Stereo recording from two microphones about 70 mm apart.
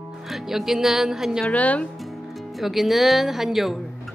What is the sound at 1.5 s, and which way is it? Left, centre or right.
Speech, centre.